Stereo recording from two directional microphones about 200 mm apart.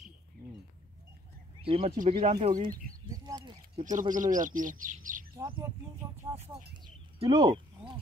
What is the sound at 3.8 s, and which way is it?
Speech, 40° right (ahead or behind).